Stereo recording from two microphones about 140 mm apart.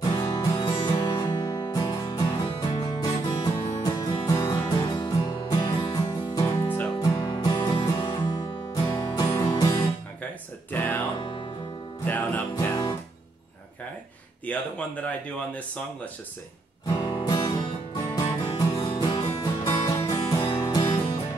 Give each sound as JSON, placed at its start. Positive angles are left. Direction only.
{"t": 0.0, "sound": "music", "side_deg": 30}
{"t": 10.7, "sound": "music", "side_deg": 15}
{"t": 11.1, "sound": "music", "side_deg": 40}
{"t": 12.1, "sound": "music", "side_deg": 10}
{"t": 14.4, "sound": "speech", "side_deg": 10}
{"t": 16.8, "sound": "music", "side_deg": 20}